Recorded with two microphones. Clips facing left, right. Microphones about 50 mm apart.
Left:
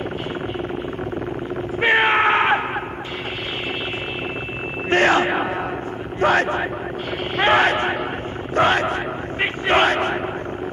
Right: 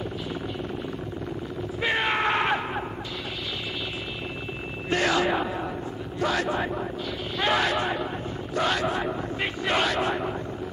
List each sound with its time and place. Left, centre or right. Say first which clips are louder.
1.8 s crowd: left 9 dB; left
4.8 s sidetone: left 7 dB; left
6.1 s speech: left 8 dB; left